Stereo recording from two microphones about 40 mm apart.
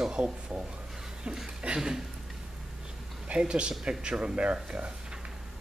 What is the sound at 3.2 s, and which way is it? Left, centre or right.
Speech, right.